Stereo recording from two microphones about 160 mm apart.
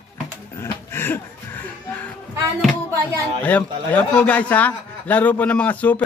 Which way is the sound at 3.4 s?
10° left (ahead or behind).